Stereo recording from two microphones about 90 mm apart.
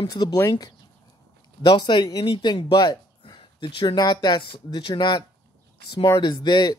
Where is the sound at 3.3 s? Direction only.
70° left (ahead or behind).